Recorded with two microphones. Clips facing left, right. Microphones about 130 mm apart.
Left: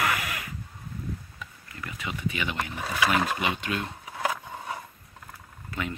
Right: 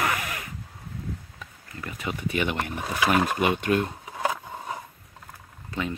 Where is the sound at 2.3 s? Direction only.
50° right (ahead or behind).